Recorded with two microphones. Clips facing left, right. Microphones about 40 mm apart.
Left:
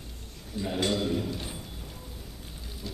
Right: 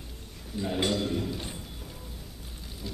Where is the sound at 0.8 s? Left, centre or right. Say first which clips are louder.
Left 3 dB; centre.